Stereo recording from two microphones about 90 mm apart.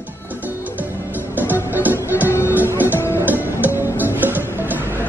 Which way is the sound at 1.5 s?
20° right (ahead or behind).